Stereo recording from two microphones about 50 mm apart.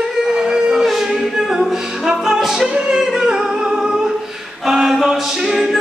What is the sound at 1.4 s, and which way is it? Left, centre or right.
A capella, centre.